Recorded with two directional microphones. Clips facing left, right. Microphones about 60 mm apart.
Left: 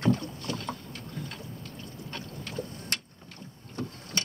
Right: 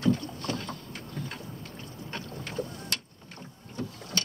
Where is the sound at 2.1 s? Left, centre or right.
Right.